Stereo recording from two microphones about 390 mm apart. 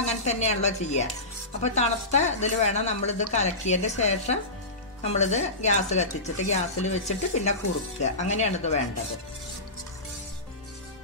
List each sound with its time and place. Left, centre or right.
0.0 s speech: centre